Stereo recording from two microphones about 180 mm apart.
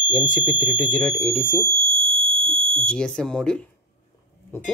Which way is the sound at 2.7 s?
5° left (ahead or behind).